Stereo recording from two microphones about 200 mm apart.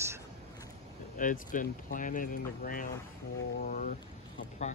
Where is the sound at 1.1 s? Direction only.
40° left (ahead or behind).